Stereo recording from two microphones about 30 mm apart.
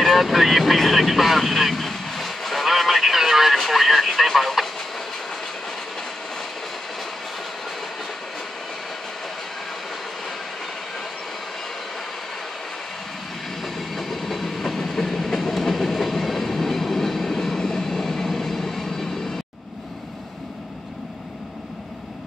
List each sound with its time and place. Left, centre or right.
0.0 s speech: centre
4.7 s train: centre
13.6 s train: centre
17.6 s train: centre